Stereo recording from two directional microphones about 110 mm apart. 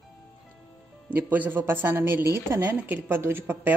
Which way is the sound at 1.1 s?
15° right (ahead or behind).